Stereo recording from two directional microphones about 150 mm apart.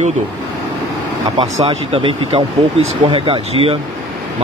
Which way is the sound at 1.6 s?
35° right (ahead or behind).